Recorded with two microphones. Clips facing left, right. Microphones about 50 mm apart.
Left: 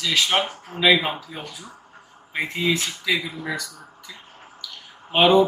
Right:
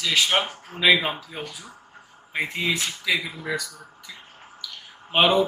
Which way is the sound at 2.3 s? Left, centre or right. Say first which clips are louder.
Left 2 dB; right.